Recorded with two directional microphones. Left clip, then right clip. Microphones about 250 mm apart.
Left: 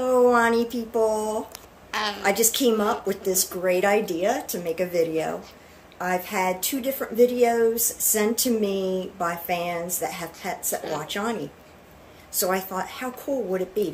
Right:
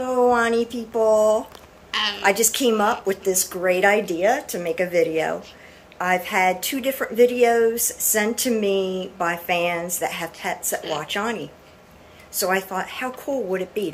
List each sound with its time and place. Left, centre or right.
0.3 s a woman's voice: centre
1.9 s a woman's voice: centre
2.2 s a woman's voice: centre
12.4 s a woman's voice: centre